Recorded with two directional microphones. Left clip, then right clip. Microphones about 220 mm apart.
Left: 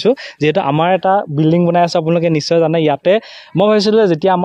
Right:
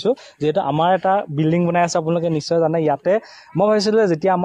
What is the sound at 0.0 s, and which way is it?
A man's voice, 45° left (ahead or behind).